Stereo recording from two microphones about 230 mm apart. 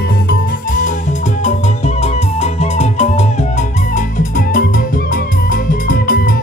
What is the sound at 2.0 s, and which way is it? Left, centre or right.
Music, left.